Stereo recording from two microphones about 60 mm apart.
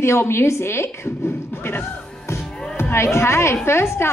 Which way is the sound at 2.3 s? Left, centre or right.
Left.